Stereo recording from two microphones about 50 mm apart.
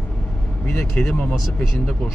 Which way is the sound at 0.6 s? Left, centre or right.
Left.